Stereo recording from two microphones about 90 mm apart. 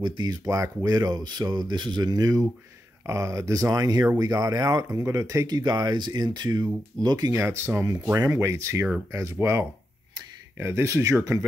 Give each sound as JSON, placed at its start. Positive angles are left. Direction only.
{"t": 0.0, "sound": "speech", "side_deg": -55}
{"t": 7.3, "sound": "speech", "side_deg": -30}
{"t": 7.9, "sound": "speech", "side_deg": -40}